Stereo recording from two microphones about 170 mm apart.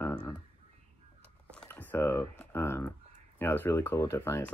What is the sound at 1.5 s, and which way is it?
Crumpling, 10° left (ahead or behind).